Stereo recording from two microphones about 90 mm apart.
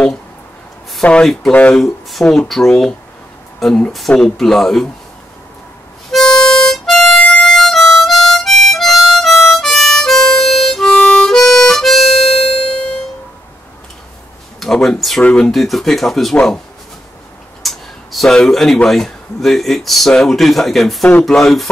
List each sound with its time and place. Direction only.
1.0 s speech: 10° left (ahead or behind)
1.5 s speech: 15° left (ahead or behind)
1.8 s speech: centre (ahead or behind)
6.1 s harmonica: 5° left (ahead or behind)
14.6 s speech: 5° left (ahead or behind)
17.6 s a sound: centre (ahead or behind)
18.9 s speech: 5° left (ahead or behind)
21.1 s speech: 15° left (ahead or behind)
21.4 s speech: centre (ahead or behind)